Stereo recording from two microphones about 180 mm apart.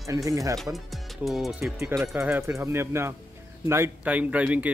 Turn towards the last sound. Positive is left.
turn(degrees=-5)  # may be behind; listen again after turning